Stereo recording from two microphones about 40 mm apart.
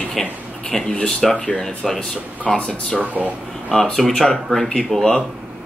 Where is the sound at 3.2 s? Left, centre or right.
Right.